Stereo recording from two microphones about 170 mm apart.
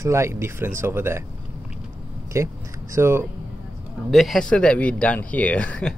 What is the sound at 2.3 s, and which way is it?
Speech, 15° right (ahead or behind).